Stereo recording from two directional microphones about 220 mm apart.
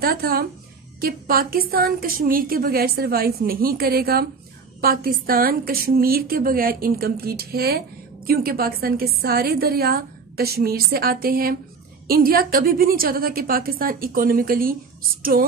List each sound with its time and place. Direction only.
0.0 s a woman's voice: 40° right (ahead or behind)